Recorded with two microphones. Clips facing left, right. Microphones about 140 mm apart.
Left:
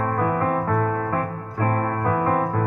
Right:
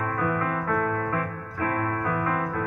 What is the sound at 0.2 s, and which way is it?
Keyboard, 35° left (ahead or behind).